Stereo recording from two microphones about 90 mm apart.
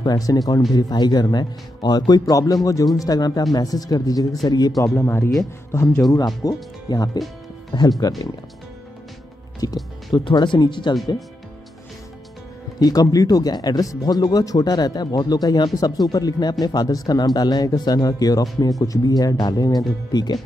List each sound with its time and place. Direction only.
0.0 s speech: 45° left (ahead or behind)
4.9 s speech: 30° left (ahead or behind)
6.1 s speech: 45° left (ahead or behind)
7.7 s speech: 60° left (ahead or behind)
9.6 s speech: 45° left (ahead or behind)
10.1 s speech: 60° left (ahead or behind)
12.7 s speech: 45° left (ahead or behind)